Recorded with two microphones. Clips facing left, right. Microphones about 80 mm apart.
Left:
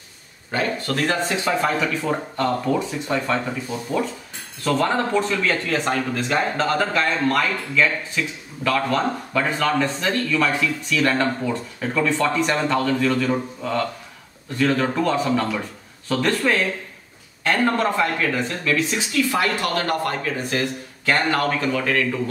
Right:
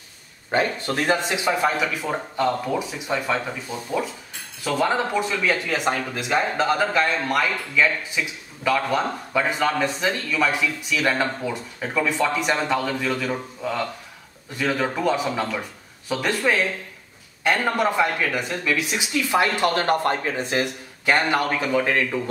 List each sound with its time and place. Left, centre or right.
0.5 s speech: right
4.6 s speech: centre